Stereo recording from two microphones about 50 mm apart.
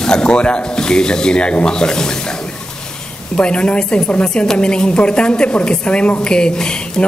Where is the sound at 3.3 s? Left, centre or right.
Left.